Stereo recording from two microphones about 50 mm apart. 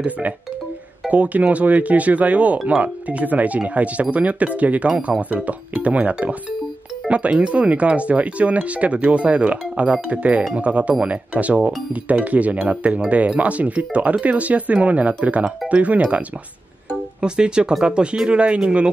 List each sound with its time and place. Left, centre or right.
1.0 s speech: right